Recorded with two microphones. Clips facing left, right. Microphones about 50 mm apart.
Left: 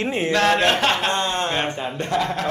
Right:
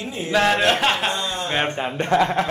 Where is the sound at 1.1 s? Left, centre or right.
Left.